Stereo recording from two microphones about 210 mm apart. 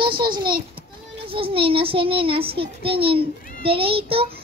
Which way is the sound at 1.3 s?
25° right (ahead or behind).